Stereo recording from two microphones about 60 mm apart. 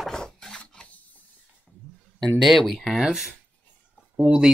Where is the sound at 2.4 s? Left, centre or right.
Centre.